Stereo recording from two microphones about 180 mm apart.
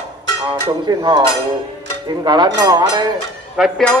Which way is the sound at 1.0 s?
25° right (ahead or behind).